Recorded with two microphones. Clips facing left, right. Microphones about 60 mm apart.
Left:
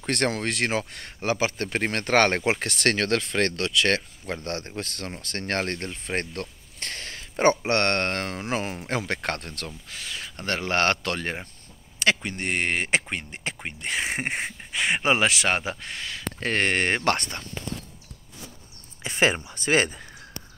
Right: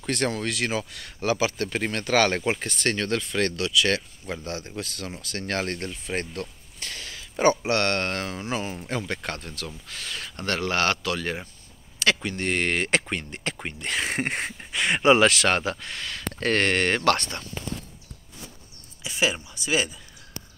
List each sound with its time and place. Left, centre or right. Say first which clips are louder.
0.0 s speech: left 1 dB; left
2.4 s speech: left 2 dB; left
9.8 s speech: right 1 dB; centre; by 11.3 s left
12.0 s speech: even; left
19.0 s speech: left 3 dB; left